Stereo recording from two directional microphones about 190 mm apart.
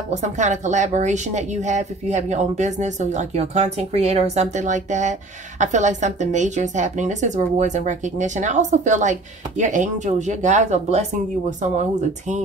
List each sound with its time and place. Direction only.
0.1 s speech: 40° right (ahead or behind)